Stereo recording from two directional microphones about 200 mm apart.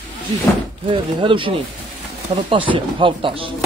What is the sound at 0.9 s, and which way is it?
A man's voice, 25° right (ahead or behind).